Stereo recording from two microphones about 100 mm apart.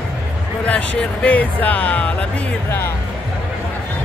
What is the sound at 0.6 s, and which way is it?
Speech, 15° left (ahead or behind).